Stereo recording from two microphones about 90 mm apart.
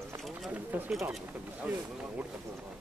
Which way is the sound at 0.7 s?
20° right (ahead or behind).